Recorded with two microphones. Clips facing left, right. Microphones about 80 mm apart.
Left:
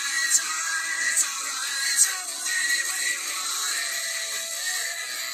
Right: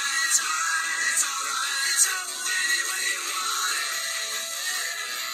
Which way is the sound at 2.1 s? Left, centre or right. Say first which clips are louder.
Right 3 dB; right.